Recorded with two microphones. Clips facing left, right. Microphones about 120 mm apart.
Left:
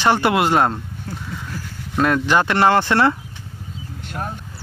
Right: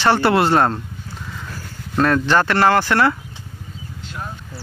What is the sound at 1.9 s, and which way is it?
Speech, 10° left (ahead or behind).